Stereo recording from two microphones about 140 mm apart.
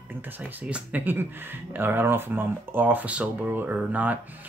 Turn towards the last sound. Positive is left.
turn(degrees=-10)  # may be behind; listen again after turning